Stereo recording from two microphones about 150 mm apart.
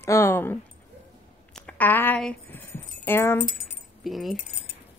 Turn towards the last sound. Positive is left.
turn(degrees=0)  # may be behind; listen again after turning